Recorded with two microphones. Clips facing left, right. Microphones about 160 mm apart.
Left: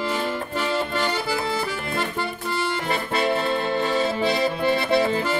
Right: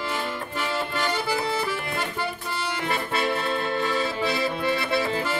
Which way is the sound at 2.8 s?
40° left (ahead or behind).